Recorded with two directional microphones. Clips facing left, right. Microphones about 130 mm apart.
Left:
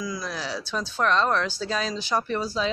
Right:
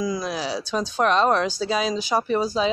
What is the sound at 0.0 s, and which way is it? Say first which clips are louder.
Speech: right 6 dB; 20° right (ahead or behind).